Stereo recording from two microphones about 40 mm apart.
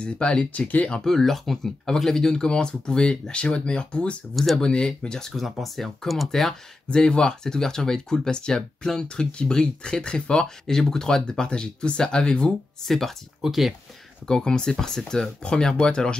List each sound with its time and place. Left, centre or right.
0.0 s speech: left
0.5 s speech: left
0.9 s speech: centre
5.3 s speech: centre
6.9 s speech: centre
12.8 s speech: centre
13.4 s speech: centre
14.2 s speech: centre